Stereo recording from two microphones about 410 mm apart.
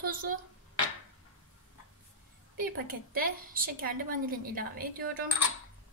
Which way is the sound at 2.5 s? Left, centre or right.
Right.